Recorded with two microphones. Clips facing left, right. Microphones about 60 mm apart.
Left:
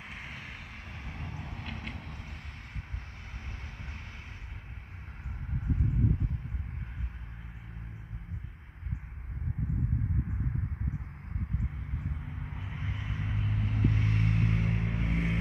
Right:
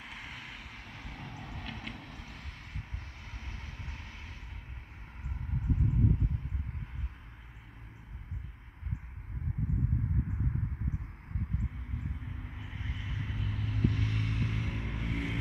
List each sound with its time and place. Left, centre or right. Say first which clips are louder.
0.0 s vehicle: left 1 dB; left
12.6 s vehicle: left 3 dB; left